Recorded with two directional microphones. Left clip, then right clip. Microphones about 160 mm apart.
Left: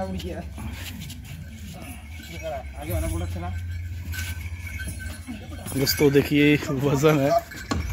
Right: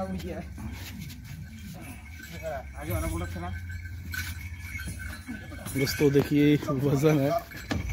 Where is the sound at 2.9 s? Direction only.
Centre (ahead or behind).